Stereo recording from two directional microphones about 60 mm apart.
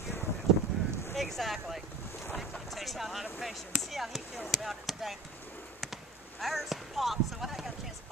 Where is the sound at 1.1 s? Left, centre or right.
Centre.